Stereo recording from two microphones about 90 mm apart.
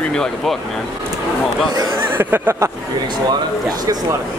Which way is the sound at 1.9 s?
25° right (ahead or behind).